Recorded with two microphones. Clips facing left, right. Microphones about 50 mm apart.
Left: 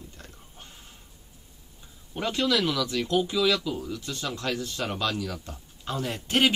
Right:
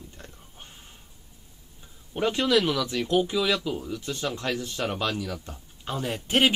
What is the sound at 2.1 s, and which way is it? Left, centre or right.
Speech, right.